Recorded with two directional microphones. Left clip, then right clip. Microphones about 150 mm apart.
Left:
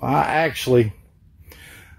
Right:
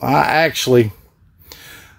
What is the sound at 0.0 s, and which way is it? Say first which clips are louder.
Speech: right 5 dB; 25° right (ahead or behind).